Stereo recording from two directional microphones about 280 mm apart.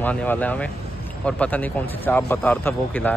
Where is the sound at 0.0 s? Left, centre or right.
Centre.